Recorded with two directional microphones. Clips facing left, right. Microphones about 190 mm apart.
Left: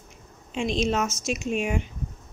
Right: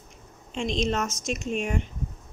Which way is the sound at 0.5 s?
5° left (ahead or behind).